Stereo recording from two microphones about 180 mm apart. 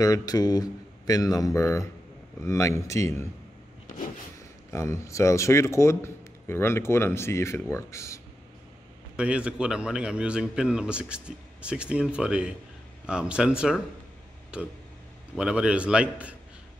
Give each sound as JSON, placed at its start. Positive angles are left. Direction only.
{"t": 0.0, "sound": "speech", "side_deg": 20}
{"t": 4.6, "sound": "speech", "side_deg": 15}
{"t": 9.1, "sound": "a man's voice", "side_deg": -5}